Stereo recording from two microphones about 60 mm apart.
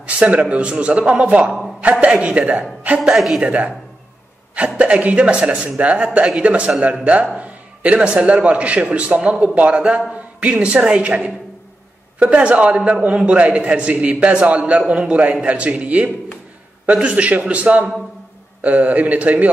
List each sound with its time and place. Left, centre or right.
0.0 s a man's voice: right
3.0 s a woman's voice: centre
3.4 s a man's voice: right